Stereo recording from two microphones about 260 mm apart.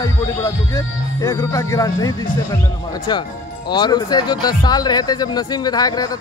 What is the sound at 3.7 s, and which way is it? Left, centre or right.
Speech, centre.